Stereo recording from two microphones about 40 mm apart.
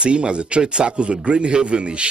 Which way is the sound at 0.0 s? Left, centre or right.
Right.